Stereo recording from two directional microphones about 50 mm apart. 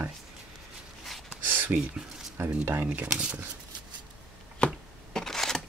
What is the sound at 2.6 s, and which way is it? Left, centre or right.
Speech, right.